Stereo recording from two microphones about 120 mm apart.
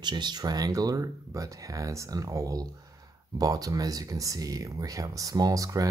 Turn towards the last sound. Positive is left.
turn(degrees=-30)  # may be behind; listen again after turning